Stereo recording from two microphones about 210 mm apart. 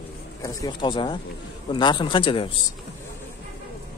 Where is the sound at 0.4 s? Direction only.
20° left (ahead or behind).